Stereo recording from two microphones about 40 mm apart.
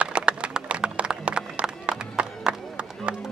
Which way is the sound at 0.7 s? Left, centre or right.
Right.